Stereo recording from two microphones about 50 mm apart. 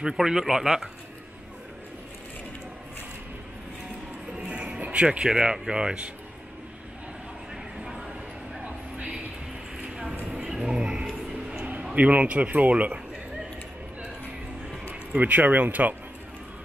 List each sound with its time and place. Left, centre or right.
0.0 s speech: centre
4.3 s music: right
10.3 s vehicle: centre
11.9 s a man's voice: right
15.1 s speech: right